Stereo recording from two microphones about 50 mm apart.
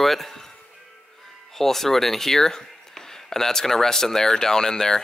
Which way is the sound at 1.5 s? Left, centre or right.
Centre.